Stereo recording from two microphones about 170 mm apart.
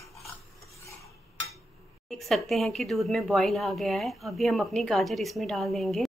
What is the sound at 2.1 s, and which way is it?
Speech, centre (ahead or behind).